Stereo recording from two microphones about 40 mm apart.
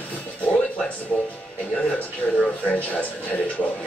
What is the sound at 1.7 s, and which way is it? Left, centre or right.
Speech, left.